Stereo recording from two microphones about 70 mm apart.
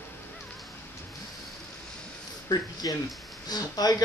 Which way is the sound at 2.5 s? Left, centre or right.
Left.